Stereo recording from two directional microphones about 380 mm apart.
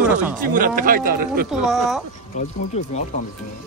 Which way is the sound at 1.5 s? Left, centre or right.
Centre.